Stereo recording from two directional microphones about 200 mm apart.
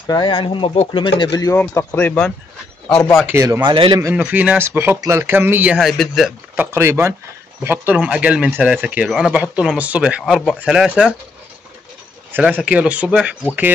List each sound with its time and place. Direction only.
0.0 s speech: 25° left (ahead or behind); by 2.3 s 5° left (ahead or behind)
3.2 s speech: 10° right (ahead or behind)
4.0 s speech: 10° right (ahead or behind)
12.3 s speech: 5° right (ahead or behind)